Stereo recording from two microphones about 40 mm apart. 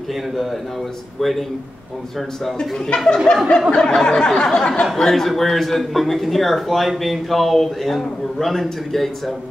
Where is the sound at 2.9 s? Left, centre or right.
Left.